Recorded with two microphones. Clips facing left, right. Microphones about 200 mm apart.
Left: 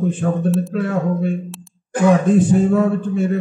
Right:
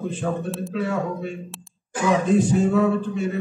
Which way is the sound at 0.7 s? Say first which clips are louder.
Left 5 dB; 55° left (ahead or behind).